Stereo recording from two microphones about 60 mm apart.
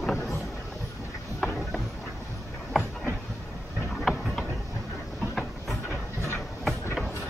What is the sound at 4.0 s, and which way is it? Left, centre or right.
Mechanisms, centre.